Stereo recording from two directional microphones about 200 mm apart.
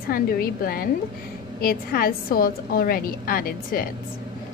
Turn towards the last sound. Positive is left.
turn(degrees=45)  # may be behind; listen again after turning